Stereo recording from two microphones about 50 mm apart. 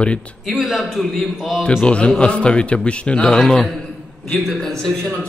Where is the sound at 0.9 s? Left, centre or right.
Centre.